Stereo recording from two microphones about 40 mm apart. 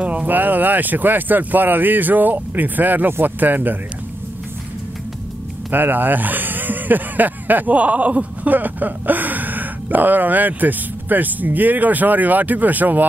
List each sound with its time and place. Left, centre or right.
0.0 s a sound: right
0.3 s speech: right
3.1 s speech: right
3.3 s speech: right
5.7 s speech: right
8.5 s speech: right